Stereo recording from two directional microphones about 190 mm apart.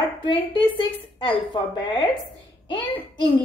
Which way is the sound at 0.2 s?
25° left (ahead or behind).